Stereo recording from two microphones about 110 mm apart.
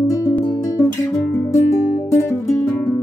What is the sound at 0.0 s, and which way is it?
Music, 30° left (ahead or behind).